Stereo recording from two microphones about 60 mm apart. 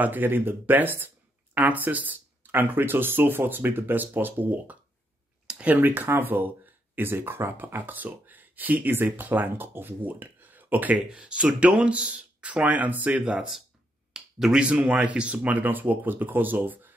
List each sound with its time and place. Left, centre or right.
0.0 s speech: right
5.5 s a sound: right
5.8 s speech: right
11.1 s speech: centre
13.2 s speech: centre; by 16.9 s right